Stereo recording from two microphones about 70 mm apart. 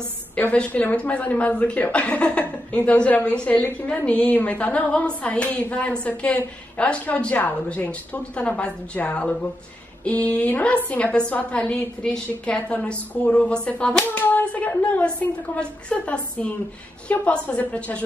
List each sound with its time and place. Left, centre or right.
0.4 s a woman's voice: left
14.0 s a woman's voice: left